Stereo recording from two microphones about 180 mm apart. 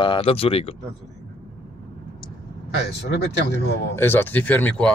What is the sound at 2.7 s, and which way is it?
Speech, 70° left (ahead or behind).